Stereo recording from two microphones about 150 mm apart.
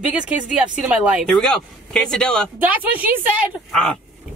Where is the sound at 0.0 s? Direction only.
10° right (ahead or behind).